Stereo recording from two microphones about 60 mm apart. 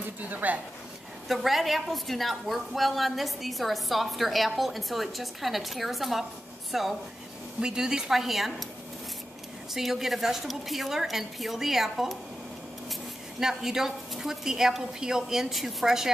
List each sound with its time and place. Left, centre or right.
0.2 s speech: right
1.3 s a woman's voice: centre
9.8 s a woman's voice: centre
13.4 s a woman's voice: centre